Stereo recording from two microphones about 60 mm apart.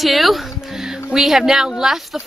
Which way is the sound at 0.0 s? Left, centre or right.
Centre.